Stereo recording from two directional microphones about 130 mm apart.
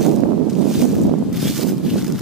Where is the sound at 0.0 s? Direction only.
Centre (ahead or behind).